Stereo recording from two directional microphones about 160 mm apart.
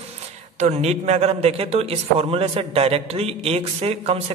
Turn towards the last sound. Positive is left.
turn(degrees=-40)  # may be behind; listen again after turning